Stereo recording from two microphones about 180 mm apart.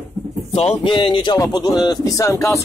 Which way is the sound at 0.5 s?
30° left (ahead or behind).